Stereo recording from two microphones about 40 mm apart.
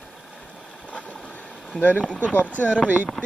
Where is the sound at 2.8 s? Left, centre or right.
Right.